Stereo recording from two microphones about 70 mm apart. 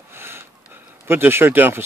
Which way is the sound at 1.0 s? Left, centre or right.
Right.